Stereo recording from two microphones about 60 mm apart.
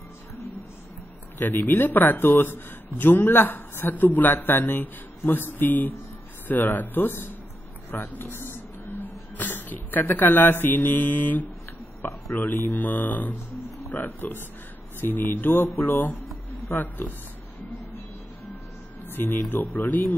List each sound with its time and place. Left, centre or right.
1.4 s speech: left
19.0 s speech: left